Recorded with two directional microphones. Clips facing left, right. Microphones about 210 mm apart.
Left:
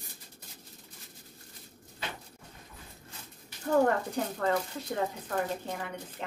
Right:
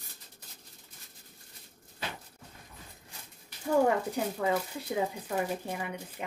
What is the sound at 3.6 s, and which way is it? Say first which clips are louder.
Speech: even; 10° right (ahead or behind).